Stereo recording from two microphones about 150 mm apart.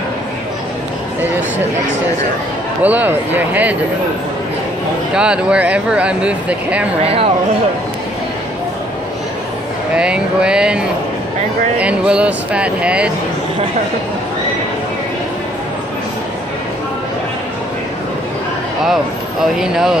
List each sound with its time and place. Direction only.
2.8 s speech: 10° right (ahead or behind)
5.1 s speech: 5° right (ahead or behind)
7.0 s speech: 40° right (ahead or behind)
9.9 s speech: 5° right (ahead or behind)
11.8 s speech: 10° right (ahead or behind)
19.4 s speech: 5° right (ahead or behind)